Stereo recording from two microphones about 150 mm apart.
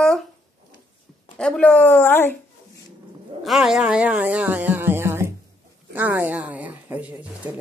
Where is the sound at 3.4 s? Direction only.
Centre (ahead or behind).